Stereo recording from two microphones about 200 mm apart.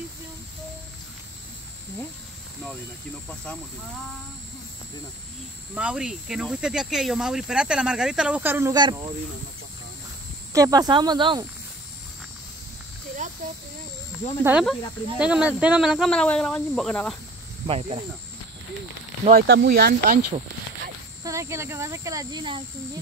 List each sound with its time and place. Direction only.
5.8 s speech: 5° right (ahead or behind); by 9.1 s 20° right (ahead or behind)
10.5 s speech: 20° right (ahead or behind)
13.4 s speech: 40° right (ahead or behind)
14.4 s speech: 5° right (ahead or behind)
17.6 s speech: 30° right (ahead or behind)
19.3 s speech: 55° right (ahead or behind)
21.2 s speech: 15° right (ahead or behind)